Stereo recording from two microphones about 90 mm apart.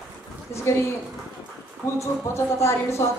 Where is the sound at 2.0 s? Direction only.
30° left (ahead or behind).